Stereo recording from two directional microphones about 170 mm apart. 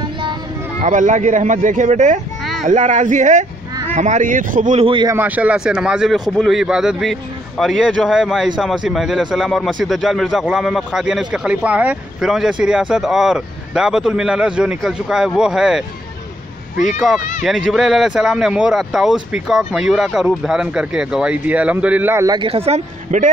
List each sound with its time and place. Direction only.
0.2 s a sound: 30° right (ahead or behind)
0.8 s speech: 50° right (ahead or behind)
4.8 s a man's voice: 30° right (ahead or behind)
5.1 s a man's voice: 10° right (ahead or behind)
17.0 s a man's voice: centre (ahead or behind); by 23.3 s 45° right (ahead or behind)